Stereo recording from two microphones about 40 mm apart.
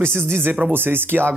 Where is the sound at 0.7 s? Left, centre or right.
Right.